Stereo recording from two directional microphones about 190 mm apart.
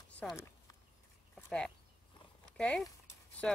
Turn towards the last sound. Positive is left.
turn(degrees=5)  # may be behind; listen again after turning